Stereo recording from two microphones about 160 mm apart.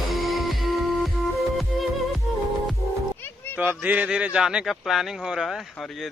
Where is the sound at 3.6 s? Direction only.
10° right (ahead or behind).